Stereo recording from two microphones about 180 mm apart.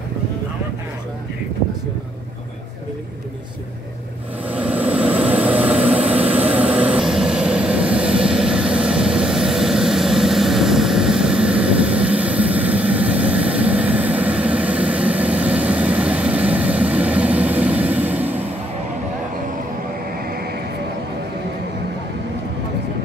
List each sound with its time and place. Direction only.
4.5 s vehicle: 10° right (ahead or behind)
20.1 s vehicle: 60° right (ahead or behind)